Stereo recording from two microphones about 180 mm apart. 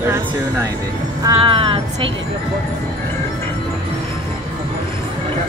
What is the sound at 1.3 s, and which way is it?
Speech, 30° right (ahead or behind).